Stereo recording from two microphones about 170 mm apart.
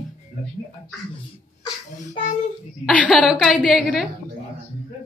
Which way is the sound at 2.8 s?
10° left (ahead or behind).